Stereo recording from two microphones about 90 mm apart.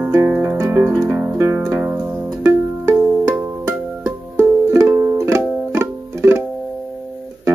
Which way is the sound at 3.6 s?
30° right (ahead or behind).